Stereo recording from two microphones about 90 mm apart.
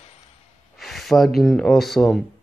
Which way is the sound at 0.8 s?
Centre (ahead or behind).